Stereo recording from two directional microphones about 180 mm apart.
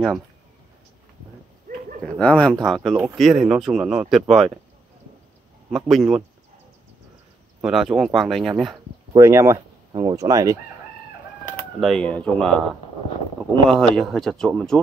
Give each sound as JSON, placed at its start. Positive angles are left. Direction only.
{"t": 2.1, "sound": "speech", "side_deg": 5}
{"t": 5.7, "sound": "speech", "side_deg": 0}
{"t": 7.6, "sound": "speech", "side_deg": -5}
{"t": 9.1, "sound": "speech", "side_deg": -15}
{"t": 11.5, "sound": "speech", "side_deg": 5}
{"t": 13.7, "sound": "speech", "side_deg": 5}